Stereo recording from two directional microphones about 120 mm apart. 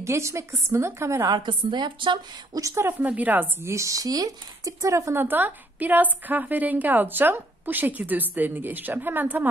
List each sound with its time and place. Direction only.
0.0 s a woman's voice: 25° right (ahead or behind)
1.3 s a woman's voice: 40° right (ahead or behind)
2.6 s speech: 20° right (ahead or behind)